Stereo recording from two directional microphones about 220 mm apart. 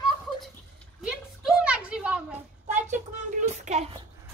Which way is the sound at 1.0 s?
Centre (ahead or behind).